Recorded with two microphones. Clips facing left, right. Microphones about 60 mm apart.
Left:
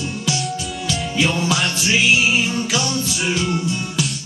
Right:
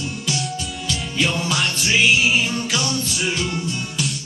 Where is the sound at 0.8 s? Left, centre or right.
Centre.